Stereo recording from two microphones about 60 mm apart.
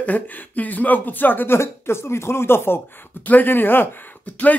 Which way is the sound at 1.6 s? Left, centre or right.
Left.